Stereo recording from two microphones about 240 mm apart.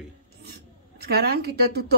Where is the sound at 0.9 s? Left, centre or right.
Right.